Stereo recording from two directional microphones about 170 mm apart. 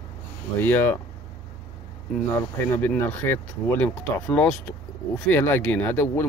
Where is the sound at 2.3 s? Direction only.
10° left (ahead or behind).